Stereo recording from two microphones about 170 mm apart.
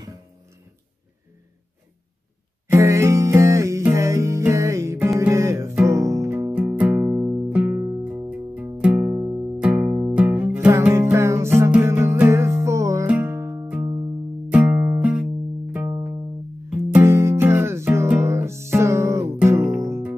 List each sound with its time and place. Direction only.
2.7 s music: 15° right (ahead or behind)
9.6 s music: 5° right (ahead or behind)
16.6 s music: 5° right (ahead or behind)
19.3 s guitar: 15° right (ahead or behind)